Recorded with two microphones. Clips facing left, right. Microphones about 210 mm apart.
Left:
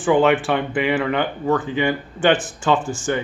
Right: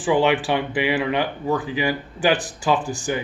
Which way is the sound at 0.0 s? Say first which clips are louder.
Left 3 dB; 5° right (ahead or behind).